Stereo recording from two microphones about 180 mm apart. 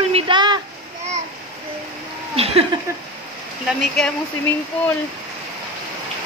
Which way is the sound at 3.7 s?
5° left (ahead or behind).